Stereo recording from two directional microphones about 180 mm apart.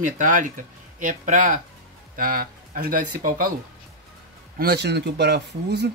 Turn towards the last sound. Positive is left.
turn(degrees=-70)  # may be behind; listen again after turning